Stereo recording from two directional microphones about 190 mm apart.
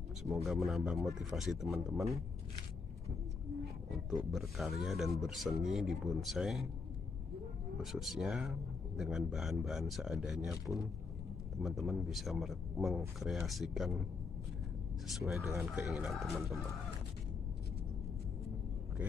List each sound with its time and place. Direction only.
0.2 s speech: centre (ahead or behind)
3.9 s speech: centre (ahead or behind)
7.8 s speech: centre (ahead or behind)
15.0 s speech: centre (ahead or behind)